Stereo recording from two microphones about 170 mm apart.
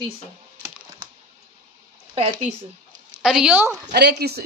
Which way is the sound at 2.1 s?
45° right (ahead or behind).